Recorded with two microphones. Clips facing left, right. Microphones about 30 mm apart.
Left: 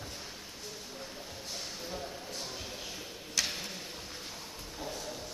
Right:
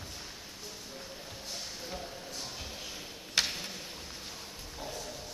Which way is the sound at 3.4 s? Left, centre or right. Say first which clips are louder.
Right 3 dB; right.